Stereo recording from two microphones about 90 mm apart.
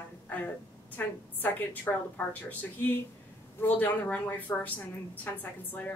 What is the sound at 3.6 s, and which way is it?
A woman's voice, 20° left (ahead or behind).